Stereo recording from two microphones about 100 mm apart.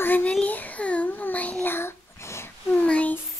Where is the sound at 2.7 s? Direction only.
15° left (ahead or behind).